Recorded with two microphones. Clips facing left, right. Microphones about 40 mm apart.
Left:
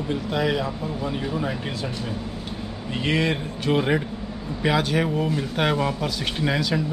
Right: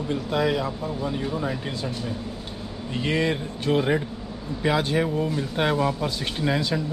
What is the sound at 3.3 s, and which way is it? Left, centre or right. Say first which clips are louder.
Speech: left 1 dB; left.